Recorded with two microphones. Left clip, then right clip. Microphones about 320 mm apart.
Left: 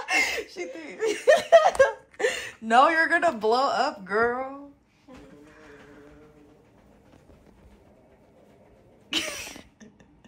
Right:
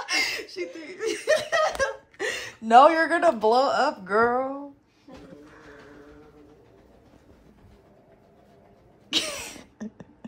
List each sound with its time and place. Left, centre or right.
0.1 s chuckle: centre
0.9 s snicker: centre
1.5 s a sound: centre
9.4 s cough: centre